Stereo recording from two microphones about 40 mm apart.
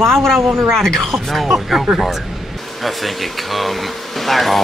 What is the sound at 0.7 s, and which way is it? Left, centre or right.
Speech, centre.